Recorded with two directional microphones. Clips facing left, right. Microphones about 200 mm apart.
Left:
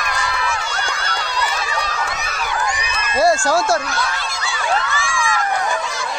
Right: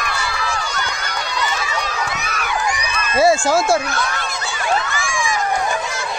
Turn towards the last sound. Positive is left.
turn(degrees=-15)  # may be behind; listen again after turning